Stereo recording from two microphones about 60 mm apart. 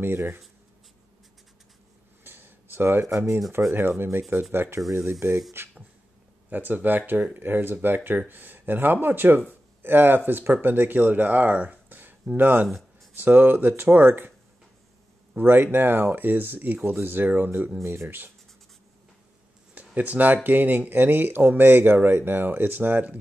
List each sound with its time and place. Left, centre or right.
0.0 s speech: right
2.2 s a sound: right
3.1 s speech: right
4.3 s speech: right
6.5 s speech: right
12.6 s a sound: centre
13.2 s speech: right
15.3 s speech: right
19.7 s a sound: right
20.4 s speech: right